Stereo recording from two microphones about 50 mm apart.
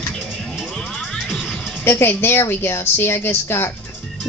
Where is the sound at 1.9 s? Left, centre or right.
Left.